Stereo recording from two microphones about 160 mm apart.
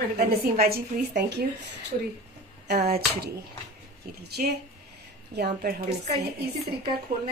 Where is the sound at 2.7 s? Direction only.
90° right.